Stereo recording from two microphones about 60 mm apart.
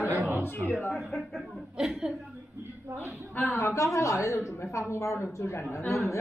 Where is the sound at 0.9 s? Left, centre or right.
Centre.